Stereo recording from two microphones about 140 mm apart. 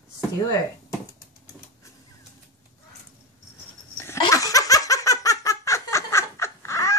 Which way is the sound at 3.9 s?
20° left (ahead or behind).